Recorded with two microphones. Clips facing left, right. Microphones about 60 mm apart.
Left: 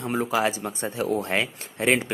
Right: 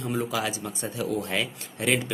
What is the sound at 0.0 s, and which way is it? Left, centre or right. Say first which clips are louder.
Speech: left 4 dB; left.